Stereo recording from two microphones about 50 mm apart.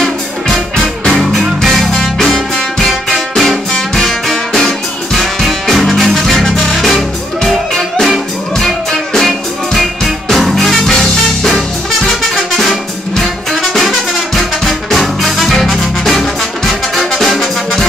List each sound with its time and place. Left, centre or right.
1.0 s music: centre